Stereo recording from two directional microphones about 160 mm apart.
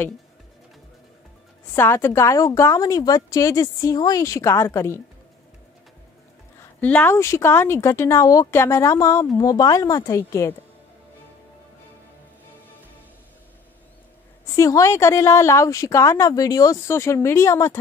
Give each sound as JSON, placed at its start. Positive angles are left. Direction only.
{"t": 1.7, "sound": "a woman's voice", "side_deg": 15}
{"t": 6.6, "sound": "a woman's voice", "side_deg": 10}
{"t": 14.5, "sound": "a woman's voice", "side_deg": 20}